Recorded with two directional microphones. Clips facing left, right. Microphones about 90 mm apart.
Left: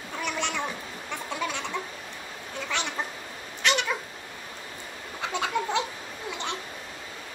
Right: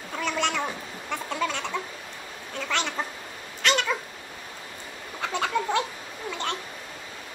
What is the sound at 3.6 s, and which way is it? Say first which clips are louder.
Cat: right 1 dB; 20° left (ahead or behind).